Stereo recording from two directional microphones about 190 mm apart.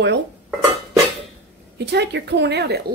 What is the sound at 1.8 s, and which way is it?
Speech, 60° right (ahead or behind).